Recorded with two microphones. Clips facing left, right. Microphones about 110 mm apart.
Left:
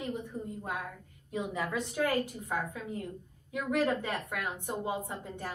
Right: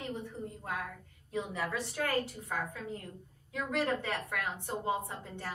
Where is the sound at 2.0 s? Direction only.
15° left (ahead or behind).